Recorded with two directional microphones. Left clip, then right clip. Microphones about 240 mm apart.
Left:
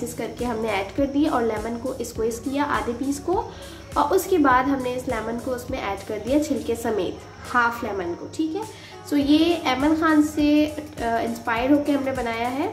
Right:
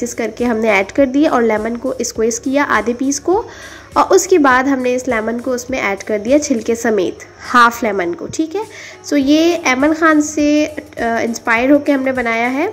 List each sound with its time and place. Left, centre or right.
0.2 s a woman's voice: right